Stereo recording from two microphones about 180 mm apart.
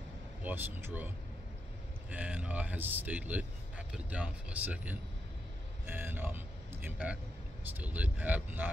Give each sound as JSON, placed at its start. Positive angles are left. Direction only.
{"t": 0.4, "sound": "speech", "side_deg": -10}